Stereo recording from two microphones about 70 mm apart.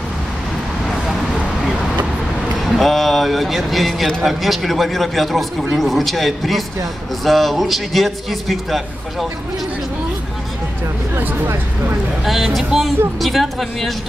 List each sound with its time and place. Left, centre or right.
2.6 s a man's voice: centre
11.1 s speech: right
12.6 s a man's voice: centre